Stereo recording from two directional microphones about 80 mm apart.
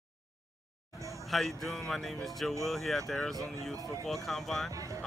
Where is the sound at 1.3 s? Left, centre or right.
Centre.